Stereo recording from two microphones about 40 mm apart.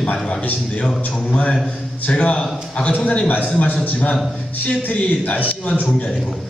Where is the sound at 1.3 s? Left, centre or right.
Left.